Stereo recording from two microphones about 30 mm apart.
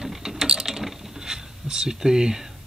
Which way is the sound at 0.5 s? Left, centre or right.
Centre.